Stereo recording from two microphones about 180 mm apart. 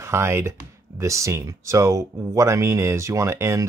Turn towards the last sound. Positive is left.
turn(degrees=-15)  # may be behind; listen again after turning